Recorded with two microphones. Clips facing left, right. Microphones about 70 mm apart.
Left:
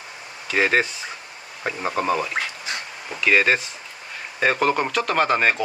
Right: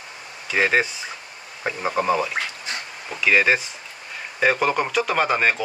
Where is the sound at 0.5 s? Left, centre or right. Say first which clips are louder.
Even; centre.